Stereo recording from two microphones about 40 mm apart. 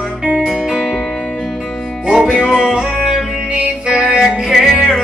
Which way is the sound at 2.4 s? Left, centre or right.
Right.